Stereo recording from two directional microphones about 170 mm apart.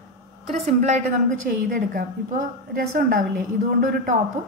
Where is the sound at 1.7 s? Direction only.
55° right (ahead or behind).